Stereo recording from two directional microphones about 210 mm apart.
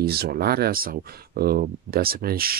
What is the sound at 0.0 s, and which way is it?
Speech, 50° right (ahead or behind).